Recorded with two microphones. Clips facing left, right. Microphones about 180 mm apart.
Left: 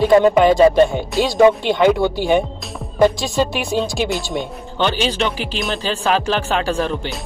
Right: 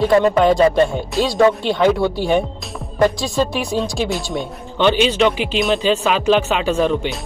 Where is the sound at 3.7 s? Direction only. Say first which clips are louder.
Left 1 dB; centre (ahead or behind).